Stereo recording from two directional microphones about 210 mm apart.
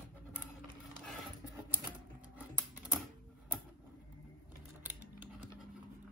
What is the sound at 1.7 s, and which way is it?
Typewriter, 5° right (ahead or behind).